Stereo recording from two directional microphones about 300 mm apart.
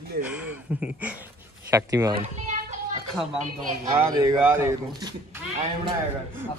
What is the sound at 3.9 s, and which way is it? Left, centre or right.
Speech, centre.